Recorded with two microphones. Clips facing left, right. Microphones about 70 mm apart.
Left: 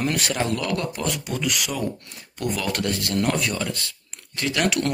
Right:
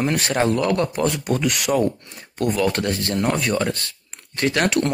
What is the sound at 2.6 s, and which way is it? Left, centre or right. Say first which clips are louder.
Speech: right 4 dB; right.